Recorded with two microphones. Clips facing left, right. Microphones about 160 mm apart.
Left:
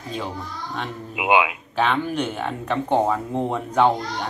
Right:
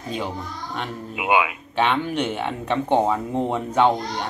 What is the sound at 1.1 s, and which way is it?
Speech, 15° left (ahead or behind).